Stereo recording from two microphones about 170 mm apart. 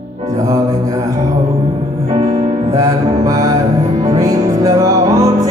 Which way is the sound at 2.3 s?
45° right (ahead or behind).